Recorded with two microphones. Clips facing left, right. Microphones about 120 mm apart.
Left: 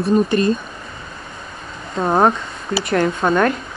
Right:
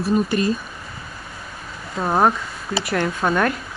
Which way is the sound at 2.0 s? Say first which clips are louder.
Left 3 dB; 5° right (ahead or behind).